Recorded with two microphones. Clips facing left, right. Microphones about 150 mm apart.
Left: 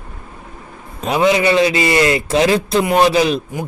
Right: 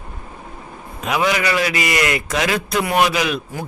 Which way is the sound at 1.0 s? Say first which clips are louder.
Left 5 dB; 30° left (ahead or behind).